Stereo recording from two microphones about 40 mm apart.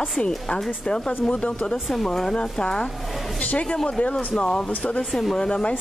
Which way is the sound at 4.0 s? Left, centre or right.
Left.